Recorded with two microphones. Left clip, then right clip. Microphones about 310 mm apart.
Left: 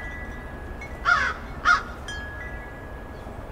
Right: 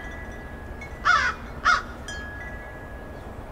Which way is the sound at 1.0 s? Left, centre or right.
Right.